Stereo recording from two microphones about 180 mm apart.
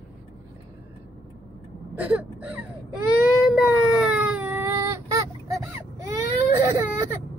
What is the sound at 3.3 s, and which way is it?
Baby cry, 5° right (ahead or behind).